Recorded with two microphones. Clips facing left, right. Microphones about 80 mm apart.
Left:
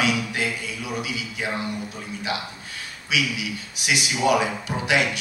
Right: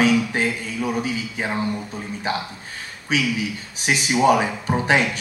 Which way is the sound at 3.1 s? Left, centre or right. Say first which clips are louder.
Right 4 dB; right.